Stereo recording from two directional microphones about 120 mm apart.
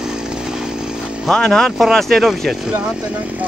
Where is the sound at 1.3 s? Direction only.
5° left (ahead or behind).